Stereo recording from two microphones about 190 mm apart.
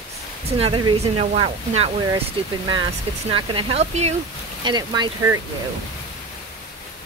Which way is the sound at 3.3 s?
30° right (ahead or behind).